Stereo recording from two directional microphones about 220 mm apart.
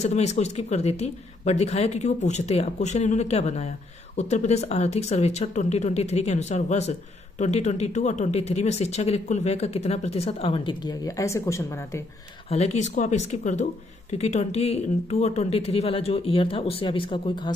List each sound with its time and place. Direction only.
0.0 s speech: 30° left (ahead or behind); by 12.0 s 15° left (ahead or behind)
12.4 s speech: 30° left (ahead or behind)